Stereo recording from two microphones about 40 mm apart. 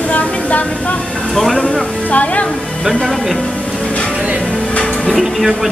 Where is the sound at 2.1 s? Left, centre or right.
Left.